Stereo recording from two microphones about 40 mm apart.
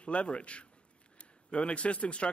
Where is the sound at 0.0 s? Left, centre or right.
Left.